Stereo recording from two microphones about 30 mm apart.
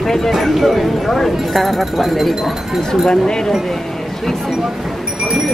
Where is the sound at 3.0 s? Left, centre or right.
Left.